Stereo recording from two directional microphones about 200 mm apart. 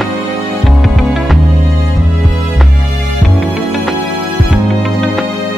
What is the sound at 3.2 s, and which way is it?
Music, centre (ahead or behind).